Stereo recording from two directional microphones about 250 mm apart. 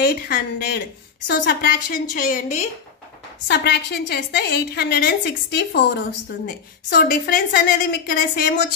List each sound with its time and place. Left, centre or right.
0.0 s a woman's voice: left
3.4 s a woman's voice: left